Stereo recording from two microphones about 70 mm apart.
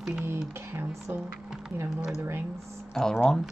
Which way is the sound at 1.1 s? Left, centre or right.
Right.